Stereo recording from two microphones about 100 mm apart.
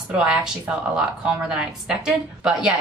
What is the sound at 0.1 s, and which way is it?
A woman's voice, 10° right (ahead or behind).